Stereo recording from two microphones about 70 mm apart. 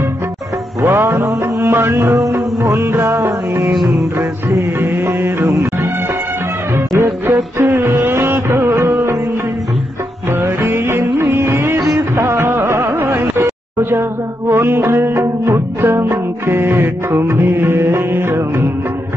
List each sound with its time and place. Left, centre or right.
0.8 s music: right
4.7 s music: right
6.9 s music: right
10.3 s music of bollywood: right
12.2 s music: right
13.7 s a sound: right
14.5 s music: right